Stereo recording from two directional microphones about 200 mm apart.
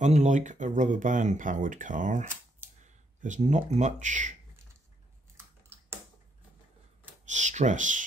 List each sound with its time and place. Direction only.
0.0 s speech: 35° right (ahead or behind)
5.4 s typing: 10° right (ahead or behind)
7.2 s speech: 35° right (ahead or behind)